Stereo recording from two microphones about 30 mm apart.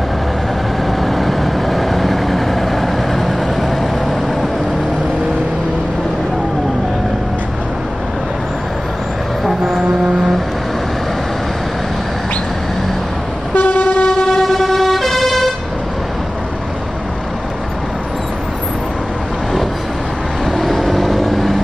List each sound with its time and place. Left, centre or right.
0.8 s vehicle: centre
13.6 s toot: left
14.1 s train: left
14.4 s vehicle: centre
20.5 s vehicle: centre